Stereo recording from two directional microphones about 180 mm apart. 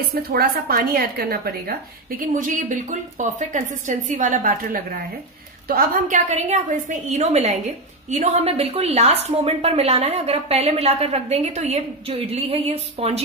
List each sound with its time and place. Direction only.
0.1 s a woman's voice: 60° right (ahead or behind); by 13.2 s 35° right (ahead or behind)